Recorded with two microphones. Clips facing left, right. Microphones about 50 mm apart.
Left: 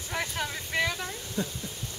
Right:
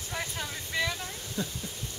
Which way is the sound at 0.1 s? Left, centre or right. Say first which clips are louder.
Left 4 dB; left.